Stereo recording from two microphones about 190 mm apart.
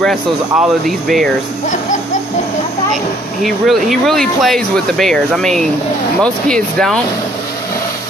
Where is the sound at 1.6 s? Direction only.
40° left (ahead or behind).